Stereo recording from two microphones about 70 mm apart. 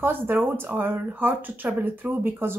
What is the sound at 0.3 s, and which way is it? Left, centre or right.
Speech, right.